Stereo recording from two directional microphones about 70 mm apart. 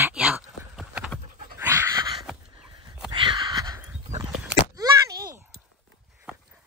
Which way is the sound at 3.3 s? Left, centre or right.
Right.